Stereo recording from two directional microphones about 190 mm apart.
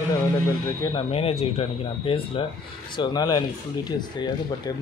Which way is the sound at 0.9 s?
30° left (ahead or behind).